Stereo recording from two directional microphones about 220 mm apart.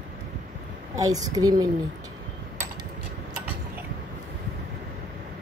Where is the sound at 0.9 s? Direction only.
15° right (ahead or behind).